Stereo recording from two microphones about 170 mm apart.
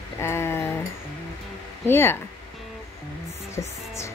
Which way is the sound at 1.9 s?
15° left (ahead or behind).